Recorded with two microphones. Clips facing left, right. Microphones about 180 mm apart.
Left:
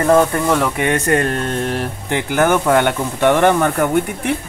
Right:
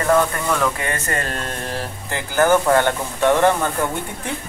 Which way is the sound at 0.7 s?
70° left (ahead or behind).